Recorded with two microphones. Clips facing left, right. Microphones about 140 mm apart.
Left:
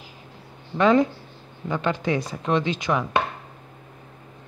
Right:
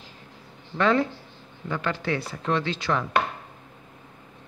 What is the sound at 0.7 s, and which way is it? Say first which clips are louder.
Chopping: left 4 dB; 15° left (ahead or behind).